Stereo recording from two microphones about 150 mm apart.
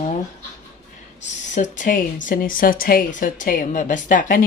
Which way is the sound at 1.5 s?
60° left (ahead or behind).